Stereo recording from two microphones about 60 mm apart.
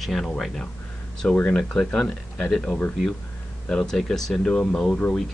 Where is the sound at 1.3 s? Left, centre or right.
Left.